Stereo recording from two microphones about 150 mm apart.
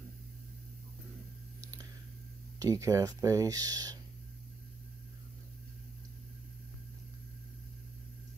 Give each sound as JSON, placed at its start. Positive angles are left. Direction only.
{"t": 2.6, "sound": "speech", "side_deg": -20}